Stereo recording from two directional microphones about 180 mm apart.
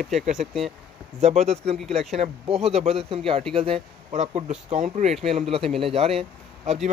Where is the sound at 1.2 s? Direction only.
35° right (ahead or behind).